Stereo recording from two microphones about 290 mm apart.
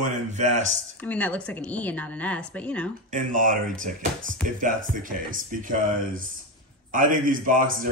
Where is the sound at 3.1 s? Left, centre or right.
Right.